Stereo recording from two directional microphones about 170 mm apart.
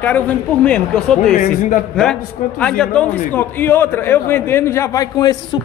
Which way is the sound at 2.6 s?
5° left (ahead or behind).